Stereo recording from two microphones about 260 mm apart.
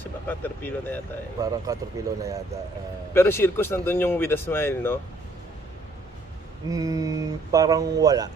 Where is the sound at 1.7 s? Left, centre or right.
Centre.